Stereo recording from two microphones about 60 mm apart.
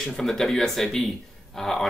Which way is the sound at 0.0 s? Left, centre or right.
Centre.